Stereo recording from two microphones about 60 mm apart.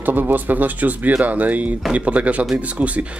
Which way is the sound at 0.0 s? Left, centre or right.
Right.